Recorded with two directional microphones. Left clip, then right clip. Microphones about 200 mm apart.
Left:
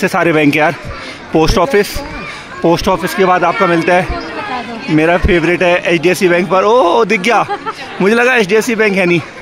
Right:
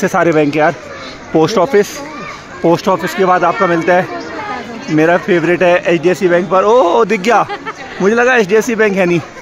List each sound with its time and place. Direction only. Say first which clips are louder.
0.0 s speech: even; centre (ahead or behind)
0.3 s speech: even; 15° left (ahead or behind)
7.6 s a sound: left 1 dB; 20° left (ahead or behind)
8.2 s speech: right 1 dB; 5° left (ahead or behind)